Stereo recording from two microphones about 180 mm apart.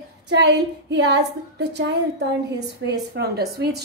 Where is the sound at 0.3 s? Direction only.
70° right (ahead or behind).